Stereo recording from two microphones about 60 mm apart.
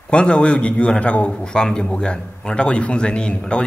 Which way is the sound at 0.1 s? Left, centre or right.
Centre.